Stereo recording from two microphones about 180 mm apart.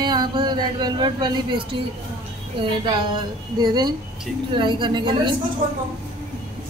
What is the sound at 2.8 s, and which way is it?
A woman's voice, 25° right (ahead or behind).